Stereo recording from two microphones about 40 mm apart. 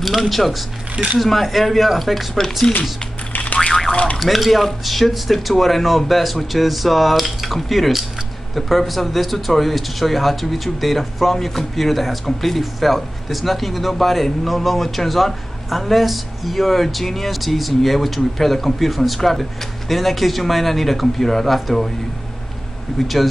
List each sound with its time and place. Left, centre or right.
0.0 s speech: centre
3.5 s boing: centre
3.9 s speech: left
4.2 s speech: centre
22.9 s speech: centre